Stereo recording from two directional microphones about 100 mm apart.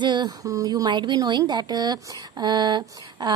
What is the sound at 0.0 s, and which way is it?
A woman's voice, 50° right (ahead or behind).